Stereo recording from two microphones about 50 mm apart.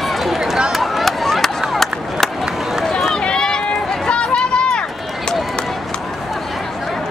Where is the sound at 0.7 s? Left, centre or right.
Centre.